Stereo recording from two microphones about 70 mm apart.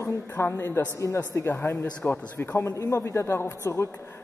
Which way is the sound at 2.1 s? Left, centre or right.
Centre.